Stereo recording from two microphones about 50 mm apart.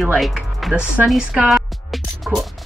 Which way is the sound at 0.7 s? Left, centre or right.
Right.